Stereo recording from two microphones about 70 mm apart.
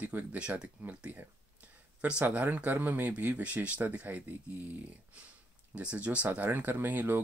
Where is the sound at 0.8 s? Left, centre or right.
Right.